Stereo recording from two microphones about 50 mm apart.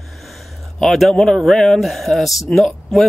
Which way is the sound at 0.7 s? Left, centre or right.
Centre.